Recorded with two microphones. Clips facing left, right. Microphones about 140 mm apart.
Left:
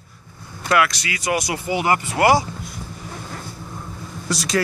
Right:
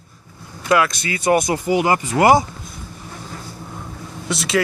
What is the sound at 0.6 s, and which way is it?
Speech, 20° right (ahead or behind).